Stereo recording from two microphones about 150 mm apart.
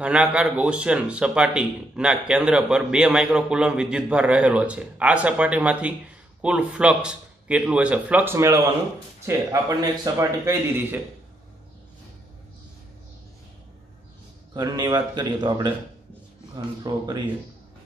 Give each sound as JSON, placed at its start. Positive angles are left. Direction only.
{"t": 0.0, "sound": "a man's voice", "side_deg": -5}
{"t": 14.5, "sound": "a man's voice", "side_deg": -25}